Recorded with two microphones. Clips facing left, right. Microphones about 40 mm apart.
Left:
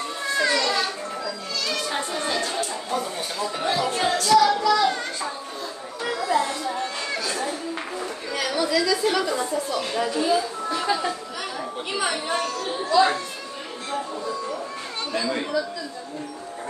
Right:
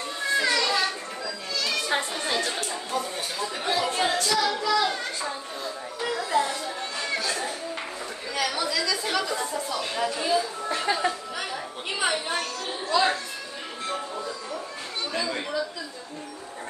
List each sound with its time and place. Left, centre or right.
0.3 s children playing: centre
2.1 s chatter: centre
2.9 s music: centre
4.2 s a sound: centre
6.0 s a sound: centre
8.4 s a woman's voice: centre
10.7 s speech: right
11.9 s a woman's voice: centre
12.3 s a woman's voice: centre